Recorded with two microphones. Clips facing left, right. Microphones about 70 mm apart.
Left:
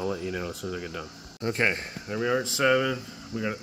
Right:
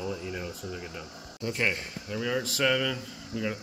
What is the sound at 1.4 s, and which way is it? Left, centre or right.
Speech, left.